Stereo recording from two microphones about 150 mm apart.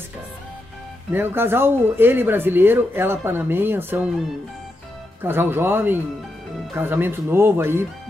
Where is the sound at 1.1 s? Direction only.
15° right (ahead or behind).